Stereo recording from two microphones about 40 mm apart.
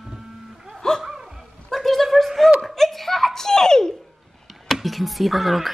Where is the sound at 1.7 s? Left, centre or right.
Centre.